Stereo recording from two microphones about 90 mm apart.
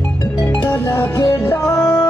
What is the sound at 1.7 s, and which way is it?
Music, 10° left (ahead or behind).